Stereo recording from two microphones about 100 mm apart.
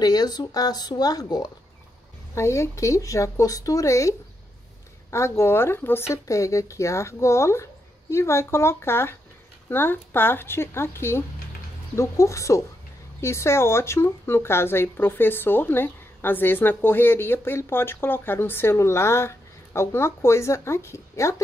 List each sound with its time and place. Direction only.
0.0 s speech: 40° left (ahead or behind)
2.3 s speech: 30° left (ahead or behind)
5.1 s speech: 30° left (ahead or behind)